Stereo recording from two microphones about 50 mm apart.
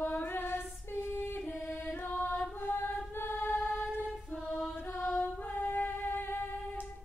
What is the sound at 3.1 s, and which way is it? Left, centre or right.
Choir, left.